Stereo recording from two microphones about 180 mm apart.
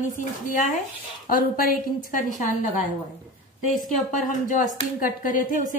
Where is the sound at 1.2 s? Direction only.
50° left (ahead or behind).